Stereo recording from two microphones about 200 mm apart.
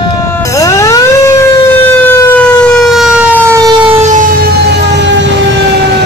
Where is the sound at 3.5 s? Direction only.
20° right (ahead or behind).